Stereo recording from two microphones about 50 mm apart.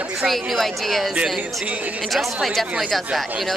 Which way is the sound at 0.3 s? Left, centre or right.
Centre.